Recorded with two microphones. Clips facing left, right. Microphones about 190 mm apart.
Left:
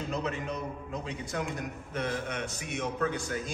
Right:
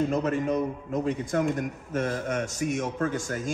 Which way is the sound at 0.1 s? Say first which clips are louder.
Right 8 dB; 50° right (ahead or behind).